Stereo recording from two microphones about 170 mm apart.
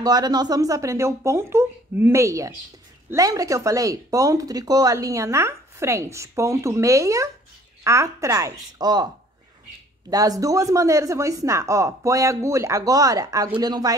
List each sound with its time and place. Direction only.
0.0 s speech: 25° right (ahead or behind)